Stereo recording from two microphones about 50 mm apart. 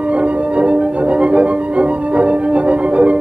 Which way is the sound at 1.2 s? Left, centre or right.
Right.